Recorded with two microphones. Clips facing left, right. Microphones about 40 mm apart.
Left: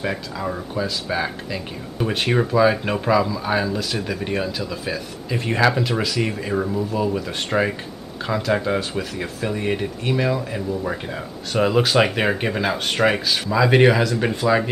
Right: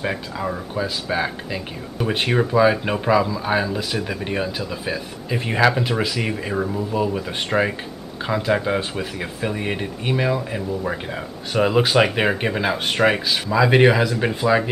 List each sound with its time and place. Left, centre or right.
0.0 s speech: centre